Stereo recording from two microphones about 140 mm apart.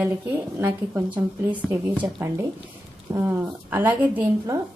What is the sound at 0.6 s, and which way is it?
A woman's voice, 15° right (ahead or behind).